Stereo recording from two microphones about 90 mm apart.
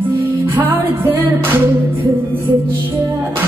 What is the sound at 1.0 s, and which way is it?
Music, 25° right (ahead or behind).